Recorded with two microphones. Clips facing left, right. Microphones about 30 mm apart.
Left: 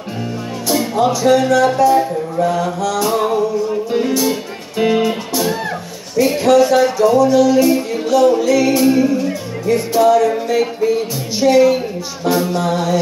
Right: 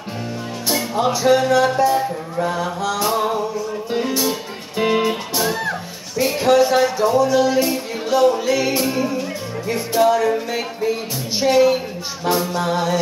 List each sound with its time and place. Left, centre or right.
0.7 s music: centre
1.3 s music: centre
4.2 s music: centre
11.3 s music: centre